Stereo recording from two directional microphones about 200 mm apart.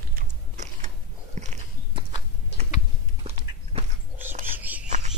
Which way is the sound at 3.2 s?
30° right (ahead or behind).